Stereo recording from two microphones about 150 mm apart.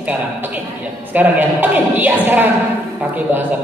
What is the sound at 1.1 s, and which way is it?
Speech, 10° right (ahead or behind).